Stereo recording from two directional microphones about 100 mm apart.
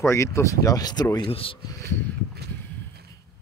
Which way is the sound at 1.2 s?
65° left (ahead or behind).